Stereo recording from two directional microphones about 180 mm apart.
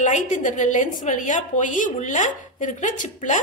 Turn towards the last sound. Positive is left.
turn(degrees=45)  # may be behind; listen again after turning